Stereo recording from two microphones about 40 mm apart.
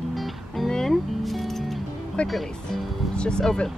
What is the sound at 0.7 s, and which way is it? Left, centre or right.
Music, centre.